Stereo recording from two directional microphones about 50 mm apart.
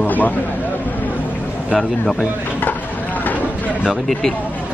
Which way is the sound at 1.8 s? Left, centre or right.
Centre.